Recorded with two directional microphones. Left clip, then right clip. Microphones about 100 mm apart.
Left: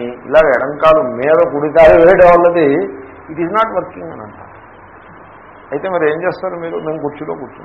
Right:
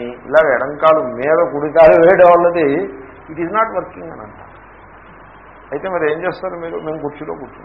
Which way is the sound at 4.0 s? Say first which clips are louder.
Left 3 dB; 30° right (ahead or behind).